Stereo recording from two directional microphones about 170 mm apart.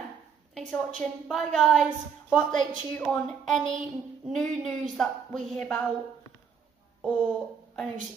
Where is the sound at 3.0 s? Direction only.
5° left (ahead or behind).